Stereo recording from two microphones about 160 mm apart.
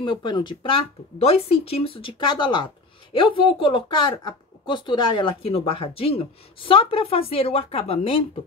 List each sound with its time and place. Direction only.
0.0 s speech: 30° left (ahead or behind)